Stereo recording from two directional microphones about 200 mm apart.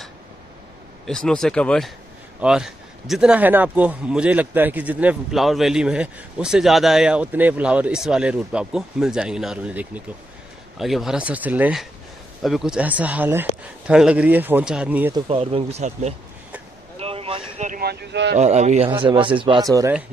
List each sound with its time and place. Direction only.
1.0 s a man's voice: centre (ahead or behind)
15.1 s speech: 25° right (ahead or behind)
17.0 s a sound: 30° right (ahead or behind); by 18.4 s 60° right (ahead or behind)
18.4 s a man's voice: 35° right (ahead or behind)
18.9 s speech: 25° right (ahead or behind)